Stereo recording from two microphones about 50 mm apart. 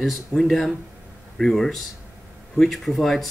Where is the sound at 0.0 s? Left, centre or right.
Centre.